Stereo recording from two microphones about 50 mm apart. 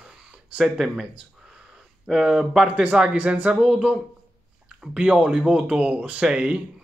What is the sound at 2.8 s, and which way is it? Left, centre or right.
Speech, right.